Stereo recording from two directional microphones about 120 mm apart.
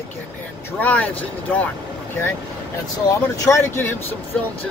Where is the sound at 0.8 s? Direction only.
10° left (ahead or behind).